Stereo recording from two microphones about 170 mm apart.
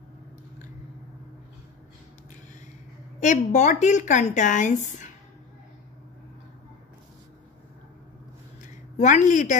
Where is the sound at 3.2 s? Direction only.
45° left (ahead or behind).